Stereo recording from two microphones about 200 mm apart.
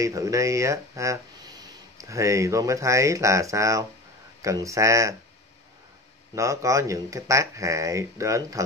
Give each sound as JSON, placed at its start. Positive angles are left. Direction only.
{"t": 0.0, "sound": "speech", "side_deg": -15}
{"t": 6.3, "sound": "speech", "side_deg": -15}